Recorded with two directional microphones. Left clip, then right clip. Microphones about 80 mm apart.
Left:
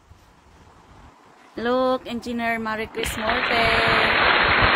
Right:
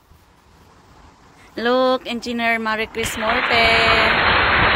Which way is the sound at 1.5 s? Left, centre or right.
Right.